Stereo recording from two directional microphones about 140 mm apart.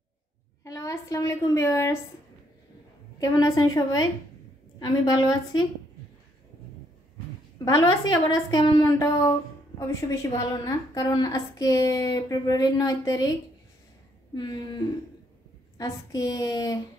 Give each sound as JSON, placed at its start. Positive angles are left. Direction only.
{"t": 0.7, "sound": "a woman's voice", "side_deg": 25}
{"t": 3.2, "sound": "a woman's voice", "side_deg": 25}
{"t": 7.5, "sound": "a woman's voice", "side_deg": 25}
{"t": 8.8, "sound": "a woman's voice", "side_deg": 20}
{"t": 14.3, "sound": "a woman's voice", "side_deg": 30}
{"t": 15.8, "sound": "a woman's voice", "side_deg": 30}